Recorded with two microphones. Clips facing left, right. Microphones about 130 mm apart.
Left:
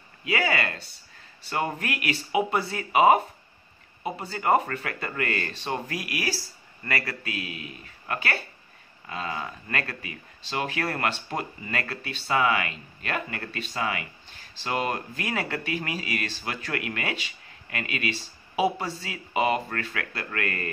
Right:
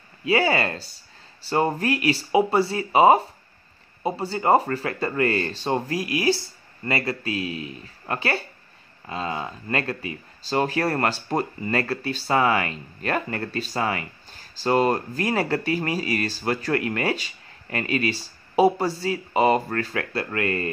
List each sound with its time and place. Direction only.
0.2 s speech: 30° right (ahead or behind)